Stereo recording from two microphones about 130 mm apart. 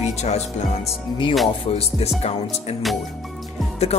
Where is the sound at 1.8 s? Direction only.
55° left (ahead or behind).